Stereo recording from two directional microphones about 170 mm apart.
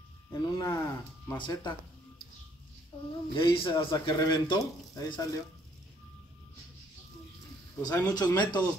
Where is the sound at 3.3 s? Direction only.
30° left (ahead or behind).